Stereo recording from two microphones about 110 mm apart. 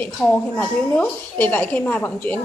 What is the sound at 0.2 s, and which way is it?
A woman's voice, 15° left (ahead or behind).